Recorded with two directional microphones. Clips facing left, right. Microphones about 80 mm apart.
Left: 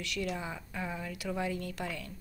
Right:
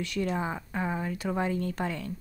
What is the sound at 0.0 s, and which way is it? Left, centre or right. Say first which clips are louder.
Speech: right 6 dB; right.